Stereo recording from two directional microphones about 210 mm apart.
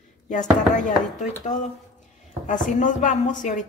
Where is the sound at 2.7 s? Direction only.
35° left (ahead or behind).